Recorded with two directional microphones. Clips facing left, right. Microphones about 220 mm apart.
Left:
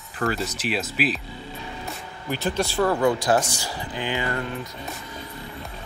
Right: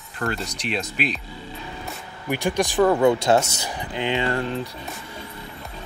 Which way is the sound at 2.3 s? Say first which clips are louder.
Right 3 dB; 15° right (ahead or behind).